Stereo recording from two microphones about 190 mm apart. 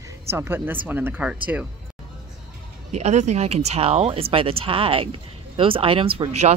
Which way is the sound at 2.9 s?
35° right (ahead or behind).